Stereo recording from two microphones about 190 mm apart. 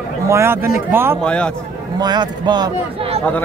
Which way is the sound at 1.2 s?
5° left (ahead or behind).